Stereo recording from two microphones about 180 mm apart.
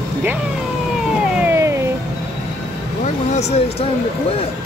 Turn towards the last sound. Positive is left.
turn(degrees=35)  # may be behind; listen again after turning